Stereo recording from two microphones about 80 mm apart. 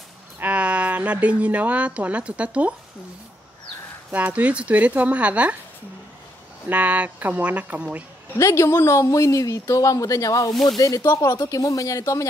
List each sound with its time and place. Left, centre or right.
0.4 s a woman's voice: centre
4.1 s speech: centre
6.7 s speech: centre
8.4 s speech: left